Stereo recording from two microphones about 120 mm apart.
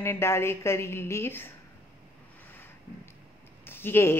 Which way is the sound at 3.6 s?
20° left (ahead or behind).